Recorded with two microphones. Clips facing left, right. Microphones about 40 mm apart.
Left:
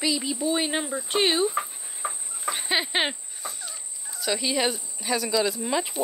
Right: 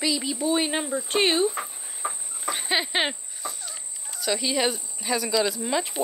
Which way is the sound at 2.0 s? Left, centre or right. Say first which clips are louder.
Even; centre.